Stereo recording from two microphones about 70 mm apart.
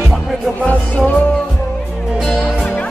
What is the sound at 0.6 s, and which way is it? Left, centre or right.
Music, left.